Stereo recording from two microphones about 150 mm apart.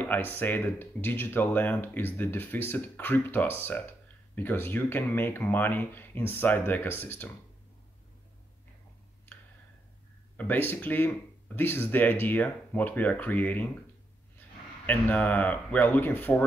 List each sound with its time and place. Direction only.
0.0 s speech: 15° left (ahead or behind)
10.3 s speech: 10° left (ahead or behind)
14.9 s speech: 10° left (ahead or behind)